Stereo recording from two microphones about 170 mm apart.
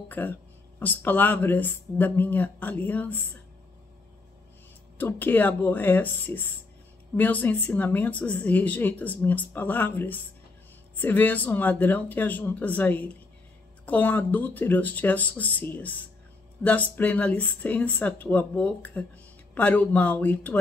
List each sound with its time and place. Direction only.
0.1 s speech: 10° left (ahead or behind)
4.9 s speech: 10° left (ahead or behind)